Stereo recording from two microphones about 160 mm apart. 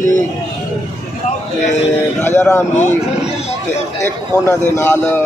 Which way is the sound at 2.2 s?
15° left (ahead or behind).